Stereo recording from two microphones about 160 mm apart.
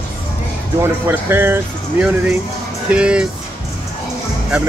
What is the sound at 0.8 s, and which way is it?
Speech, 15° right (ahead or behind).